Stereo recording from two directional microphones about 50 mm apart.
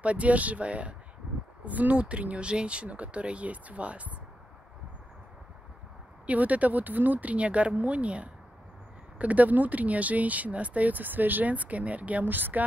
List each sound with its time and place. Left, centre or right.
0.0 s speech: right
6.2 s speech: right